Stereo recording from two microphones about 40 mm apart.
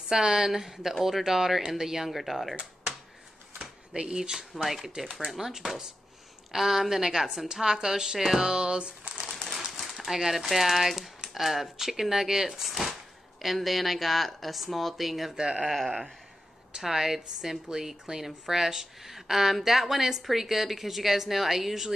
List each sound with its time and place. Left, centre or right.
0.1 s a woman's voice: centre
3.9 s a woman's voice: right
9.7 s a sound: centre
10.4 s a woman's voice: centre
15.3 s speech: right
15.6 s speech: centre
16.7 s a woman's voice: centre